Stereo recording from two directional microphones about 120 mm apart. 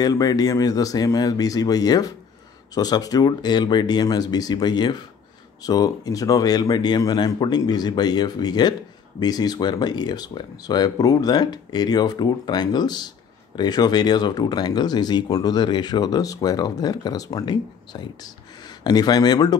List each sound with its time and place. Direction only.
0.0 s speech: 30° left (ahead or behind)